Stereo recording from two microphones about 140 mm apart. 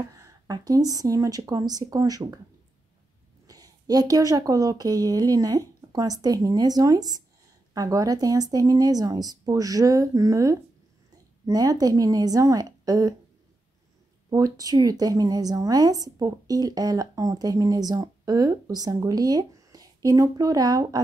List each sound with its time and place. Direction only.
0.1 s speech: 25° right (ahead or behind)
3.4 s speech: 25° right (ahead or behind)
14.3 s speech: 25° right (ahead or behind)